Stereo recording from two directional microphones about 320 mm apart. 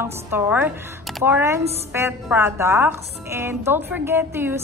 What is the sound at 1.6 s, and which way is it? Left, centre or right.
Speech, centre.